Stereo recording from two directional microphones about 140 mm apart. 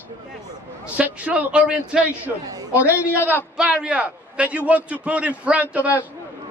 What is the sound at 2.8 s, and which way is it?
Speech, 15° left (ahead or behind).